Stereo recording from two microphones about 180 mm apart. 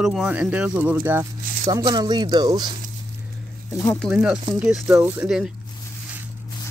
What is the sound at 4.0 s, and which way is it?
Speech, 5° right (ahead or behind).